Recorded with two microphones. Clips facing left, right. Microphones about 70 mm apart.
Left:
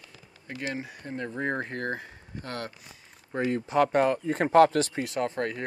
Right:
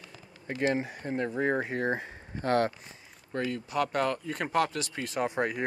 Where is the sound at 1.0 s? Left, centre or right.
Centre.